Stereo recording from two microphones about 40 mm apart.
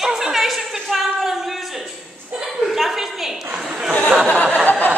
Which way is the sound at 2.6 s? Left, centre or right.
Centre.